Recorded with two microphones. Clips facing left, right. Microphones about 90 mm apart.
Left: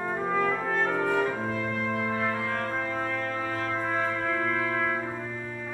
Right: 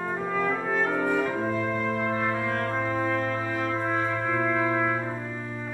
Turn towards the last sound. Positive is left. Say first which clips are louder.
# right 3 dB
turn(degrees=-15)  # may be behind; listen again after turning